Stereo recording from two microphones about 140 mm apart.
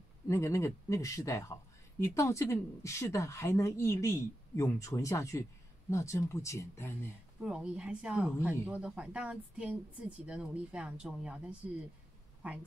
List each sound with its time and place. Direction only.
0.3 s speech: 20° left (ahead or behind)
7.4 s a woman's voice: 5° right (ahead or behind)